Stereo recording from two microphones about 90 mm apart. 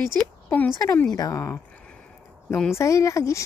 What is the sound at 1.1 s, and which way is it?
Speech, 45° left (ahead or behind).